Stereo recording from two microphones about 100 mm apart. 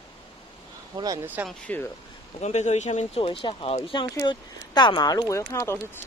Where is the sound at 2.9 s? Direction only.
70° left (ahead or behind).